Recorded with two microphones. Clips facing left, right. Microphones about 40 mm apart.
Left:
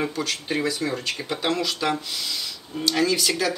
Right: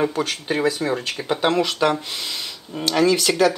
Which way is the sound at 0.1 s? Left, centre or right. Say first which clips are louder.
Right 3 dB; centre.